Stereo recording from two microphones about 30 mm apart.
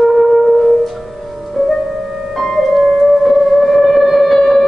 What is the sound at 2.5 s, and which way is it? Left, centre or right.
Music, centre.